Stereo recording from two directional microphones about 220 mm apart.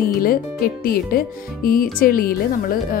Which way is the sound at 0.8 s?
40° left (ahead or behind).